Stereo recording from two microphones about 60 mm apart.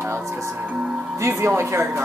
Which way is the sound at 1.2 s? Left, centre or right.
Right.